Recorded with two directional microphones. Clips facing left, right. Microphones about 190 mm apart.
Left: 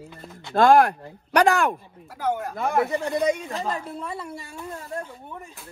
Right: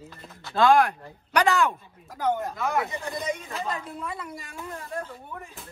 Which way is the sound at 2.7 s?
35° left (ahead or behind).